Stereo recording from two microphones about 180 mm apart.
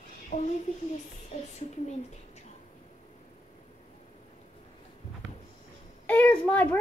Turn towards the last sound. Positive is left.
turn(degrees=10)  # may be behind; listen again after turning